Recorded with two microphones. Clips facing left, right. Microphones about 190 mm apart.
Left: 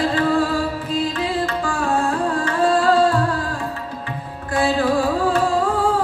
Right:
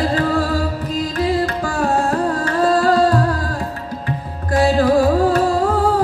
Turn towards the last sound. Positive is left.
turn(degrees=-40)  # may be behind; listen again after turning